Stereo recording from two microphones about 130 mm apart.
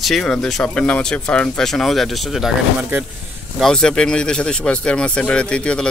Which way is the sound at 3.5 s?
5° left (ahead or behind).